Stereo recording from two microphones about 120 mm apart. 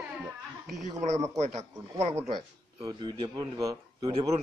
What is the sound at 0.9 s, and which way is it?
Speech, 75° right (ahead or behind).